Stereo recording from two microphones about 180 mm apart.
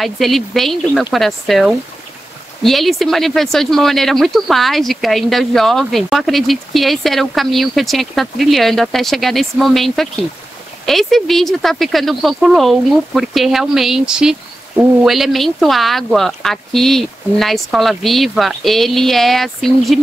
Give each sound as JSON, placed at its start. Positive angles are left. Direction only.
{"t": 0.0, "sound": "speech", "side_deg": 0}